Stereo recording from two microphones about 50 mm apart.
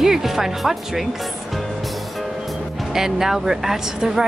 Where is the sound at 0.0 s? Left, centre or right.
Centre.